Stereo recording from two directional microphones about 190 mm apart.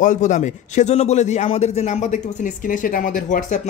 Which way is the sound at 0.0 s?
40° left (ahead or behind).